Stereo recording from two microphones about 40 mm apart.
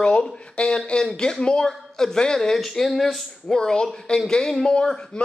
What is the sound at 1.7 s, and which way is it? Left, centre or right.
A woman's voice, centre.